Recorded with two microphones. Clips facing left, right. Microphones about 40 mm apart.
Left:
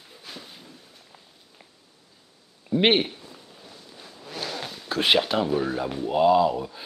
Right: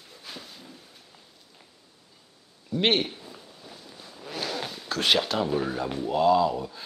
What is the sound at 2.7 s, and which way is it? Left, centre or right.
Speech, centre.